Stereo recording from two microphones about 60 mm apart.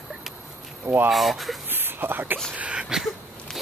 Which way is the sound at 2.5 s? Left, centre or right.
Right.